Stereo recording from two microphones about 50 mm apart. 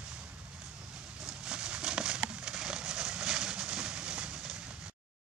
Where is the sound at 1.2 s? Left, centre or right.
Centre.